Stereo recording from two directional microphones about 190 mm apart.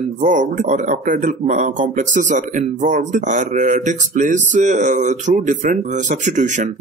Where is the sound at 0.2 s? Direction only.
40° right (ahead or behind).